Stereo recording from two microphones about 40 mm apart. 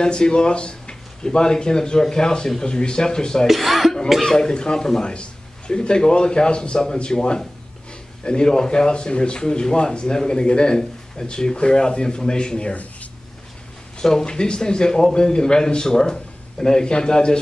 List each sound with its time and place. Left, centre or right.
0.0 s speech: left
3.4 s speech: centre
4.2 s a man's voice: centre
5.0 s speech: left
13.9 s a man's voice: centre